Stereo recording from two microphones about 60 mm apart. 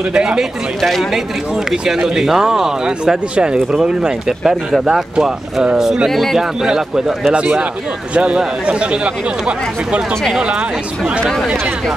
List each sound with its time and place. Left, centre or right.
0.1 s speech: centre
0.8 s speech: centre
8.1 s speech: centre